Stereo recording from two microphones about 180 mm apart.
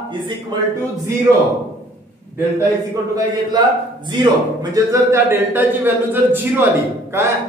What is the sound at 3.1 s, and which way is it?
A man's voice, 25° right (ahead or behind).